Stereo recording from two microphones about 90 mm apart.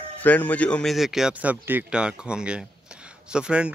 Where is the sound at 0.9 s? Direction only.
5° right (ahead or behind).